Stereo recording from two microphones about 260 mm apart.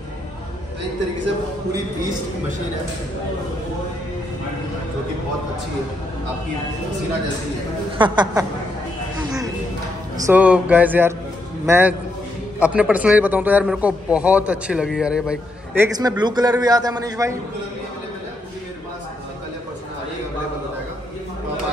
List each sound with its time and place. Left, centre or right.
8.0 s a man's voice: centre
9.2 s music: centre
10.1 s a man's voice: centre
15.8 s a man's voice: centre